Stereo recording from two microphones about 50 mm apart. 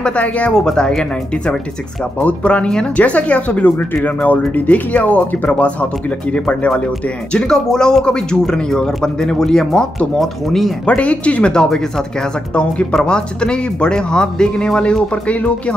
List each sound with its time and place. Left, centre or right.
0.0 s speech: left
0.7 s speech: centre
7.3 s speech: centre
11.0 s speech: left
11.5 s speech: centre